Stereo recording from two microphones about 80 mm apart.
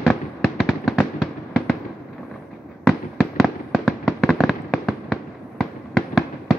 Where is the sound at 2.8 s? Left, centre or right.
Centre.